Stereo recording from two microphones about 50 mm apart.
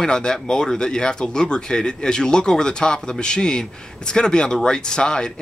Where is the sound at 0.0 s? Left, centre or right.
Centre.